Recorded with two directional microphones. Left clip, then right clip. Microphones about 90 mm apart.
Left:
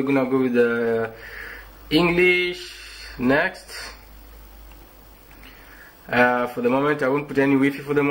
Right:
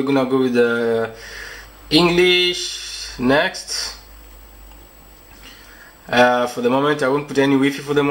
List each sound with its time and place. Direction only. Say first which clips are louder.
0.0 s speech: right 3 dB; 20° right (ahead or behind)
6.0 s speech: right 4 dB; 25° right (ahead or behind)